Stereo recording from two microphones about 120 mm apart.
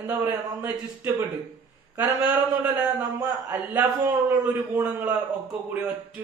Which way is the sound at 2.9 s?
20° right (ahead or behind).